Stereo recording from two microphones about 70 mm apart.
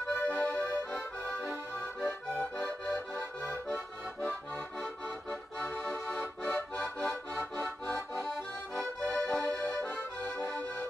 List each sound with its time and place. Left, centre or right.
0.1 s accordion: left
2.5 s accordion: centre
5.3 s accordion: centre